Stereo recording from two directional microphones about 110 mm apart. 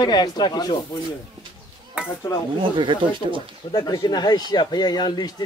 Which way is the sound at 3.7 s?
35° left (ahead or behind).